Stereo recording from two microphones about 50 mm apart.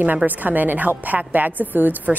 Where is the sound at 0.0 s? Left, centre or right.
Right.